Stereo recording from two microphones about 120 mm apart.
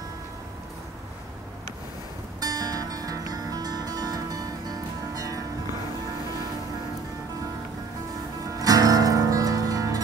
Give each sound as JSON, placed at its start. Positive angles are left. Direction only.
{"t": 2.4, "sound": "music", "side_deg": -30}
{"t": 8.5, "sound": "music", "side_deg": -30}